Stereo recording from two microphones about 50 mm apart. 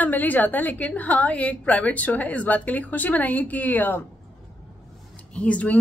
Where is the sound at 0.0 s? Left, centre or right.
Left.